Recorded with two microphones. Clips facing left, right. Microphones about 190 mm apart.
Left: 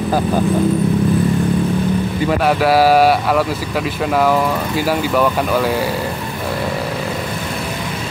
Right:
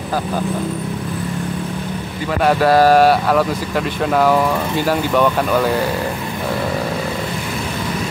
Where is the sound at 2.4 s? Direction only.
5° left (ahead or behind).